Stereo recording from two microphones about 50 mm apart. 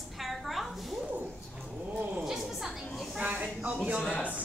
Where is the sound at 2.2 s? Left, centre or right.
Centre.